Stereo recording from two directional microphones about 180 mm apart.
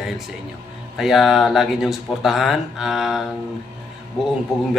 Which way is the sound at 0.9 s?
Centre (ahead or behind).